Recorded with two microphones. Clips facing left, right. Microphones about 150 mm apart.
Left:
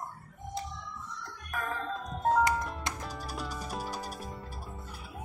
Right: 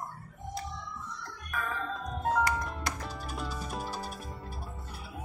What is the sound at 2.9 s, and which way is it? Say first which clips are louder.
Music: right 1 dB; 20° left (ahead or behind).